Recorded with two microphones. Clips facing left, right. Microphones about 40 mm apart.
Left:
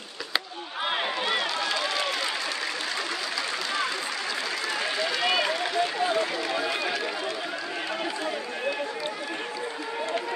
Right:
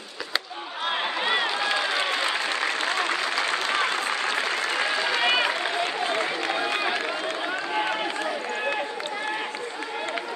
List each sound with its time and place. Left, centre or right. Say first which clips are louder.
1.0 s applause: right 2 dB; centre